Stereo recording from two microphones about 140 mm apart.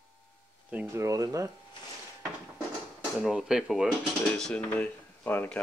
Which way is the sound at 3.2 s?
5° right (ahead or behind).